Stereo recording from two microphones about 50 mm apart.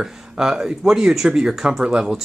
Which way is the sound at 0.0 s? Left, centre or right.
Centre.